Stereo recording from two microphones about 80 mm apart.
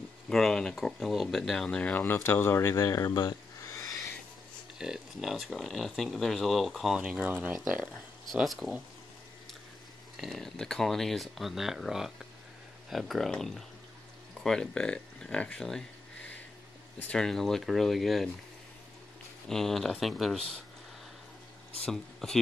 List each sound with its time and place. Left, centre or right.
0.3 s speech: centre
2.1 s speech: left
3.3 s a sound: left
4.7 s speech: centre
8.5 s speech: centre
10.1 s speech: centre
17.1 s speech: centre
19.5 s speech: centre
21.8 s speech: centre